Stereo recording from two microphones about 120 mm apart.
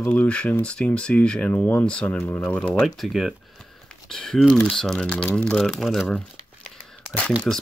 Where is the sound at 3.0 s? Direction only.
Centre (ahead or behind).